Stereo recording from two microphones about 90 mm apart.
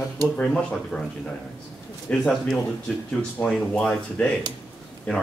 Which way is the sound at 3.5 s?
5° left (ahead or behind).